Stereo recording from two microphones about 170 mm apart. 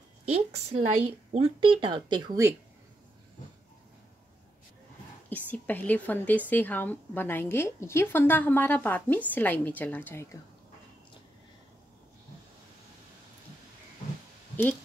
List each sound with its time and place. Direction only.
0.3 s speech: 40° right (ahead or behind); by 2.5 s 20° right (ahead or behind)
5.3 s a woman's voice: 10° left (ahead or behind)